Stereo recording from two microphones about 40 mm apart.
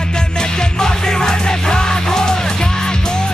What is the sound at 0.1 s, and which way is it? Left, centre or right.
Music, centre.